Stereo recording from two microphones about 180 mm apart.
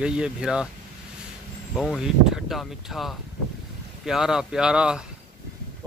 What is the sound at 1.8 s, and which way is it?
Speech, centre (ahead or behind).